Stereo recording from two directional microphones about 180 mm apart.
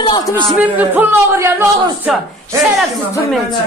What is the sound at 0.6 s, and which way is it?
A man's voice, 10° right (ahead or behind).